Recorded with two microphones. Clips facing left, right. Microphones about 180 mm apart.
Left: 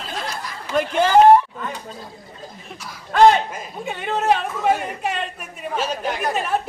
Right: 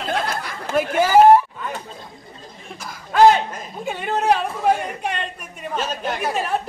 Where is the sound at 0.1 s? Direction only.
60° right (ahead or behind).